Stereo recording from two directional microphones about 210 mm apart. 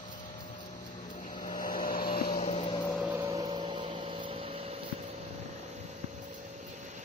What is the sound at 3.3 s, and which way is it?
Vehicle, 20° right (ahead or behind).